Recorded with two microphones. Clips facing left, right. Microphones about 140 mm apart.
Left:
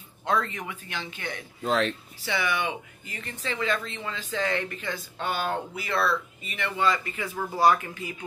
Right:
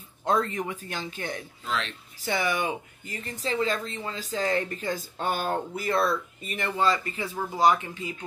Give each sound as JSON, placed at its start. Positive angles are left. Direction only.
{"t": 0.2, "sound": "speech", "side_deg": -40}
{"t": 1.6, "sound": "speech", "side_deg": 45}
{"t": 2.2, "sound": "speech", "side_deg": -40}
{"t": 7.5, "sound": "speech", "side_deg": -20}